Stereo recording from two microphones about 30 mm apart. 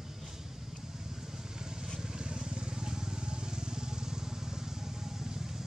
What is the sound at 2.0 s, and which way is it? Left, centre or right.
Vehicle, right.